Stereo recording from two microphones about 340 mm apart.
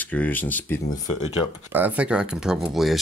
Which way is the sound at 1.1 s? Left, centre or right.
Centre.